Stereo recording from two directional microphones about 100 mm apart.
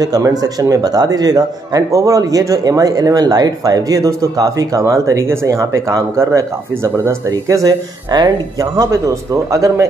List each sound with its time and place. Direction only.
0.0 s a man's voice: 40° right (ahead or behind)